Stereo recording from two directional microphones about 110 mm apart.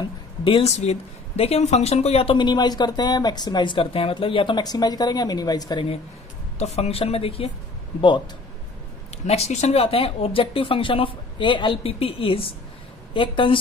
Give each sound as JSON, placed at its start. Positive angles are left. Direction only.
{"t": 0.4, "sound": "a woman's voice", "side_deg": 55}
{"t": 0.7, "sound": "speech", "side_deg": 85}
{"t": 2.3, "sound": "speech", "side_deg": 40}
{"t": 6.6, "sound": "speech", "side_deg": 80}
{"t": 9.2, "sound": "a woman's voice", "side_deg": 80}